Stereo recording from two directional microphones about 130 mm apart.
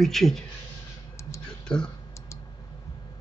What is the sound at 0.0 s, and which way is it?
Speech, centre (ahead or behind).